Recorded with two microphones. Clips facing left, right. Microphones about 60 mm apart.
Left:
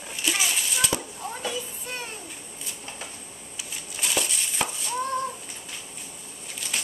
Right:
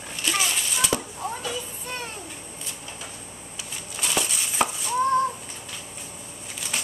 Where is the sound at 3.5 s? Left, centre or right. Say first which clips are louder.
Right 1 dB; centre.